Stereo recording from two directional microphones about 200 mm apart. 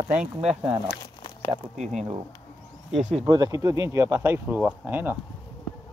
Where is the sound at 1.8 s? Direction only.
35° right (ahead or behind).